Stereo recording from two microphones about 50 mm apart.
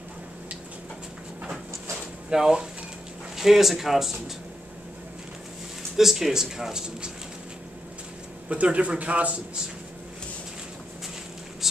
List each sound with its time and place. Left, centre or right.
2.2 s speech: centre
5.9 s speech: centre
8.5 s a man's voice: right